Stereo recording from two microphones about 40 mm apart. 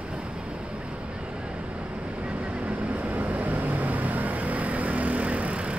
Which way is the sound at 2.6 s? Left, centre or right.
Right.